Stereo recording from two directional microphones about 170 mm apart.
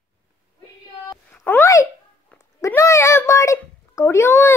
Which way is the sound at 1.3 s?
10° left (ahead or behind).